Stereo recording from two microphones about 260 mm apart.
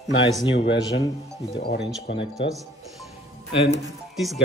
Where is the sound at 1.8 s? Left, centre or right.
Centre.